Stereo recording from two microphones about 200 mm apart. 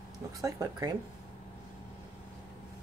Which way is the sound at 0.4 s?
15° right (ahead or behind).